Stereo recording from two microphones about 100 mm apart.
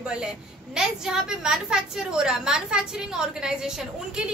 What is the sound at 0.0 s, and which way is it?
A woman's voice, 10° right (ahead or behind).